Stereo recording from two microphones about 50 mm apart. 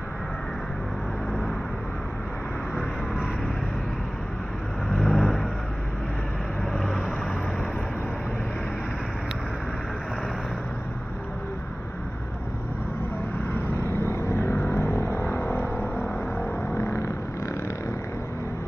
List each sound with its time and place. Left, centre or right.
4.8 s vehicle: centre
6.7 s vehicle: centre
13.9 s a sound: left
16.7 s vehicle: left